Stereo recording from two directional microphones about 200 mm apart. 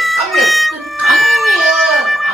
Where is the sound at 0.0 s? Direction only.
Centre (ahead or behind).